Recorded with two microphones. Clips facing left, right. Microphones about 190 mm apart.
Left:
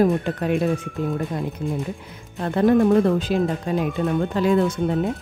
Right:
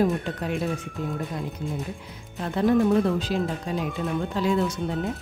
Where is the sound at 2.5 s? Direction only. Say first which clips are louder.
Left 4 dB; 55° left (ahead or behind).